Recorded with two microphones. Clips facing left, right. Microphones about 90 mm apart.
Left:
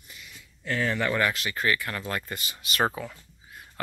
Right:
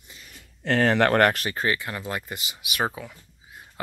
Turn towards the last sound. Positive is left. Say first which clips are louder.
# left 1 dB
turn(degrees=-5)  # may be behind; listen again after turning